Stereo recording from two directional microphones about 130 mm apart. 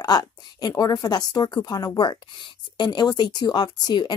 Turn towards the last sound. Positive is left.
turn(degrees=35)  # may be behind; listen again after turning